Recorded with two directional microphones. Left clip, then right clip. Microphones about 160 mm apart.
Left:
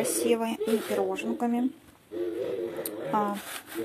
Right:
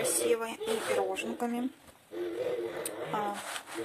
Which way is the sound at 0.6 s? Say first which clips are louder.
Left 3 dB; centre (ahead or behind).